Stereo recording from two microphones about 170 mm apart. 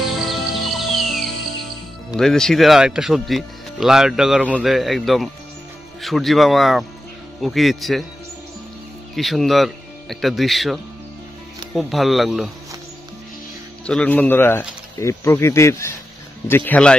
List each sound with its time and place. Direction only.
0.0 s music: centre (ahead or behind)
2.1 s speech: 5° left (ahead or behind)
9.1 s speech: centre (ahead or behind)
13.8 s speech: 5° left (ahead or behind)